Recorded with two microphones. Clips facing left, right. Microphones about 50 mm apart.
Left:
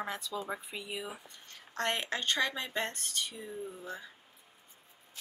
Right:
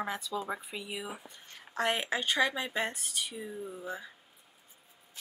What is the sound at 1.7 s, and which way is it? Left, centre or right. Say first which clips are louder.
Speech: right 3 dB; centre.